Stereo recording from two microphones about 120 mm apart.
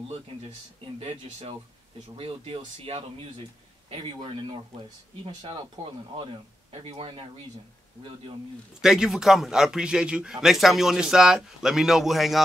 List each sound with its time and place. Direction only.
0.9 s speech: 45° right (ahead or behind)
6.7 s speech: 50° right (ahead or behind)
8.8 s a man's voice: 5° right (ahead or behind)